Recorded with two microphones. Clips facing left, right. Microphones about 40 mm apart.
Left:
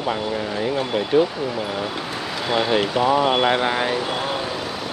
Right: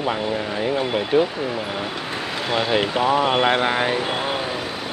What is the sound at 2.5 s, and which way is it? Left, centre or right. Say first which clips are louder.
Speech: left 1 dB; centre.